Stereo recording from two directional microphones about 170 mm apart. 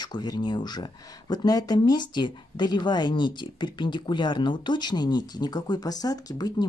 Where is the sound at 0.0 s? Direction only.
25° left (ahead or behind).